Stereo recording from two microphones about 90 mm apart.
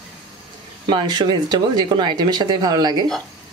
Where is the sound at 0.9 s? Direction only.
55° right (ahead or behind).